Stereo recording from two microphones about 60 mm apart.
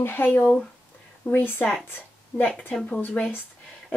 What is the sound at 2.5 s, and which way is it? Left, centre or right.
Speech, centre.